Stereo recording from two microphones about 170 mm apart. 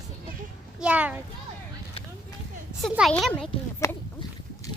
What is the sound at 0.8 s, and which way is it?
Speech, 10° right (ahead or behind).